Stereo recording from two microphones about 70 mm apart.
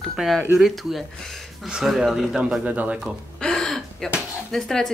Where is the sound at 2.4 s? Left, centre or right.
Centre.